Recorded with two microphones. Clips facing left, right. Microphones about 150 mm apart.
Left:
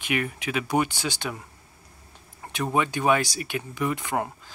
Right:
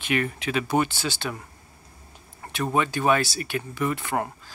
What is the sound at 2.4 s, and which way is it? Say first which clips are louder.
Speech: right 1 dB; 15° left (ahead or behind).